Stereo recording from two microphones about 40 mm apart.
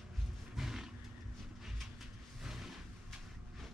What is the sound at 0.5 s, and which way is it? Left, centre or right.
Roaring cats, centre.